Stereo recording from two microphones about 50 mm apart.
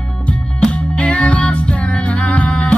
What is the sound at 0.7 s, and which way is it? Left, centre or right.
Music, left.